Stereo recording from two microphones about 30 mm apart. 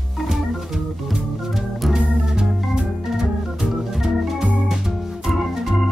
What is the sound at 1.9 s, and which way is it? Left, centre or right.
Organ, right.